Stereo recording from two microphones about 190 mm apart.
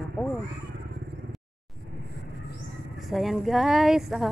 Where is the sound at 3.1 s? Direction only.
Centre (ahead or behind).